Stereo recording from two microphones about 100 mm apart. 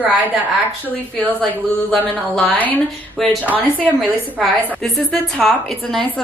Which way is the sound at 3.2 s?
Centre (ahead or behind).